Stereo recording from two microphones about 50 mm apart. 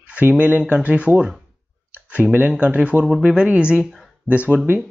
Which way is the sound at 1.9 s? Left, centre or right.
Right.